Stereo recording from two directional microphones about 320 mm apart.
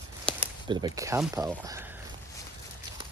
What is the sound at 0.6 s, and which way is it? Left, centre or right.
Speech, centre.